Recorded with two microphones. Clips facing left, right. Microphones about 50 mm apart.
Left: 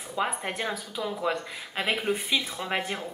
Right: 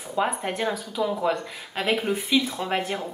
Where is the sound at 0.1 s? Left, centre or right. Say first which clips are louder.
Right 4 dB; centre.